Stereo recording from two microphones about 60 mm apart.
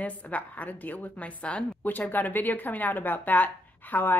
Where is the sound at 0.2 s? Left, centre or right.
Left.